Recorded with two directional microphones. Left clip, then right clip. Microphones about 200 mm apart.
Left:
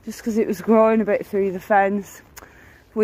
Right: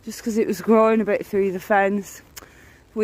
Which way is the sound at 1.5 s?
65° right (ahead or behind).